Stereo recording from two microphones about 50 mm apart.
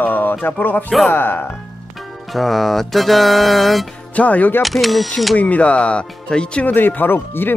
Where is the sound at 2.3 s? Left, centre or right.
Centre.